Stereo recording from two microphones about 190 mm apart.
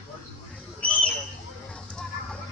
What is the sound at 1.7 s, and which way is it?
Music, 5° left (ahead or behind).